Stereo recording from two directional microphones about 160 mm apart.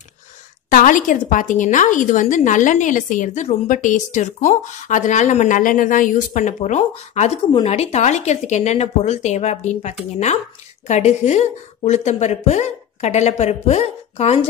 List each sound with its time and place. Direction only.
0.7 s a woman's voice: 55° left (ahead or behind); by 14.4 s 40° left (ahead or behind)